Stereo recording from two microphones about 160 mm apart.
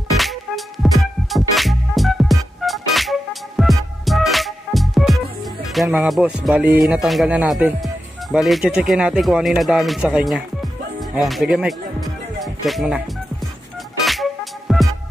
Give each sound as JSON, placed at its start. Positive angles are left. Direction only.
{"t": 0.2, "sound": "music", "side_deg": 0}
{"t": 6.8, "sound": "speech", "side_deg": 0}
{"t": 14.0, "sound": "music", "side_deg": 0}